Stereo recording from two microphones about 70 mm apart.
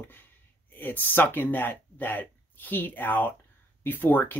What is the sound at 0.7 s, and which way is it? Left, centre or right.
Speech, left.